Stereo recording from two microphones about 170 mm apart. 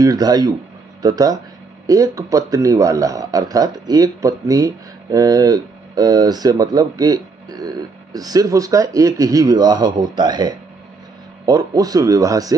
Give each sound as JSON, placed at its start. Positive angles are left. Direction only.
{"t": 0.0, "sound": "a man's voice", "side_deg": -20}